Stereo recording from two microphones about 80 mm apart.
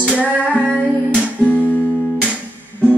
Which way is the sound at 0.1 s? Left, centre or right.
Centre.